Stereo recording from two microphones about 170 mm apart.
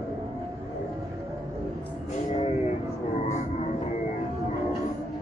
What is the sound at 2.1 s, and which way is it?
Vehicle, 45° left (ahead or behind).